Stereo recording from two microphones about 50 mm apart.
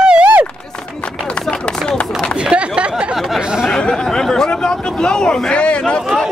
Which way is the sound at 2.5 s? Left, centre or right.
Centre.